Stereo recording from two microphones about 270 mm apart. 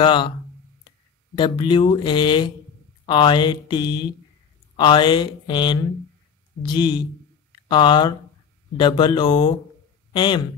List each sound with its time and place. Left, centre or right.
0.0 s speech: centre
1.3 s speech: centre